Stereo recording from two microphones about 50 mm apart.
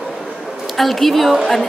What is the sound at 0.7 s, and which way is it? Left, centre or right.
Speech, centre.